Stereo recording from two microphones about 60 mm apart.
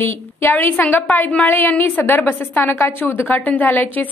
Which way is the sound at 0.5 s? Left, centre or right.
Left.